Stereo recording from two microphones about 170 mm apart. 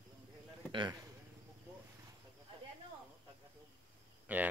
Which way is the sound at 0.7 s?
25° right (ahead or behind).